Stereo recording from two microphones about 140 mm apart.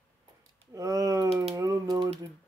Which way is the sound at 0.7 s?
25° right (ahead or behind).